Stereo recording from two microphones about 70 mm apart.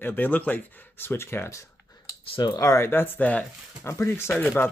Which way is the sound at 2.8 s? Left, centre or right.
Left.